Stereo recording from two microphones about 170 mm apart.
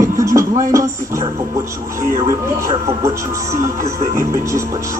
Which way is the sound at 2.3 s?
20° right (ahead or behind).